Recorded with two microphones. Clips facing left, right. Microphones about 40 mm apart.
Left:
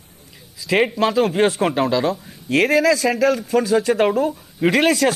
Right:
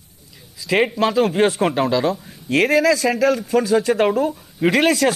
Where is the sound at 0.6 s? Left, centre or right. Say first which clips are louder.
Even; centre.